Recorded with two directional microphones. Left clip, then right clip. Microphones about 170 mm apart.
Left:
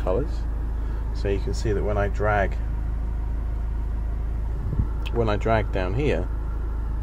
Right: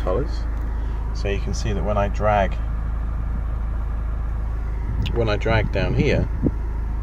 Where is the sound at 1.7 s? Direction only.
10° left (ahead or behind).